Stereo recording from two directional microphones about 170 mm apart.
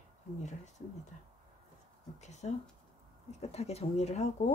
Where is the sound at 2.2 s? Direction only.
40° left (ahead or behind).